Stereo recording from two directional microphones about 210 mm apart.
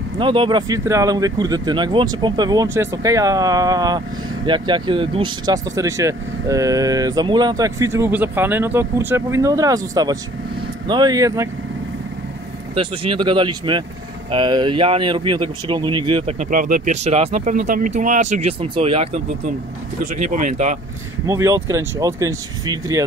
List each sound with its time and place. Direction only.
0.2 s speech: 25° right (ahead or behind)
12.7 s speech: 25° right (ahead or behind)
20.2 s speech: 35° right (ahead or behind)
21.3 s speech: 15° right (ahead or behind)